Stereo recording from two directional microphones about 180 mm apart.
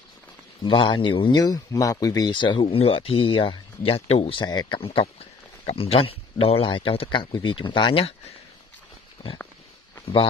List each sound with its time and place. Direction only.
0.7 s speech: 25° left (ahead or behind)